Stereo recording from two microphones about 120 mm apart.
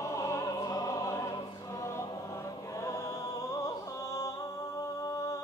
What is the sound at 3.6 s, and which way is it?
Music, 30° left (ahead or behind).